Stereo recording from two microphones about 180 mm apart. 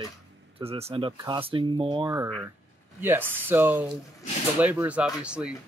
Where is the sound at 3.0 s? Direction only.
10° right (ahead or behind).